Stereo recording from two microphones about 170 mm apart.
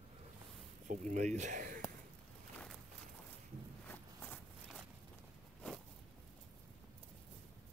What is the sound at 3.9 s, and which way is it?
Walk, 10° left (ahead or behind).